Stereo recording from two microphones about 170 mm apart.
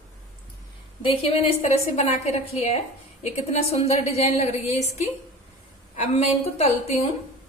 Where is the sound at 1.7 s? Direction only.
35° left (ahead or behind).